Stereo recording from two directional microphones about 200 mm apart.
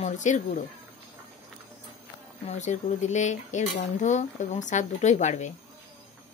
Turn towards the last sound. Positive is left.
turn(degrees=35)  # may be behind; listen again after turning